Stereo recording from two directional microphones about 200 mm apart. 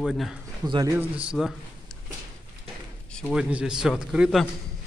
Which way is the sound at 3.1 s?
Centre (ahead or behind).